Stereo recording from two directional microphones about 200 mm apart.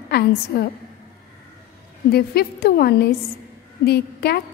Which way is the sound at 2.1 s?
50° left (ahead or behind).